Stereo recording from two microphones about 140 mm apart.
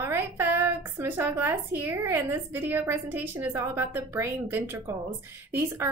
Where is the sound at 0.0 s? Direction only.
15° right (ahead or behind).